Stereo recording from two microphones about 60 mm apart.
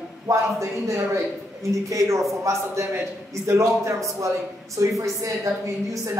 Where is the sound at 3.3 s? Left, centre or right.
Right.